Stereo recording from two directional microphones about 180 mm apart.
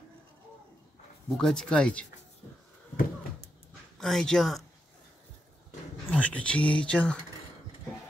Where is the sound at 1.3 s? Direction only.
5° left (ahead or behind).